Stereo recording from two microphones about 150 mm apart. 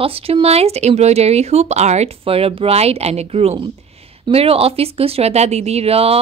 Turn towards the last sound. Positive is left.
turn(degrees=-40)  # may be behind; listen again after turning